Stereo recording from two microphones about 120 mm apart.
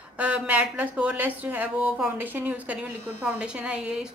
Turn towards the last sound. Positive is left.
turn(degrees=-10)  # may be behind; listen again after turning